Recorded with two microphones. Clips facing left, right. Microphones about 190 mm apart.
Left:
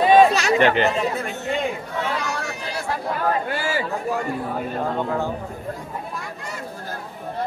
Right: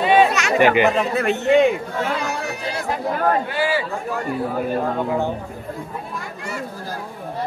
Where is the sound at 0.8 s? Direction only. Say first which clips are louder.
Right 4 dB; 70° right (ahead or behind).